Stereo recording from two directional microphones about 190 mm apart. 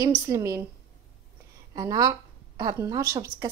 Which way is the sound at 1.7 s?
20° right (ahead or behind).